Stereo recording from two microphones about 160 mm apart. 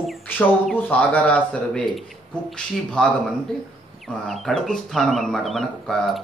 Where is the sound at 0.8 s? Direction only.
10° left (ahead or behind).